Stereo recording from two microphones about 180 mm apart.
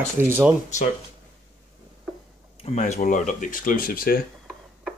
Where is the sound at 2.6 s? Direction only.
35° left (ahead or behind); by 4.2 s 55° left (ahead or behind).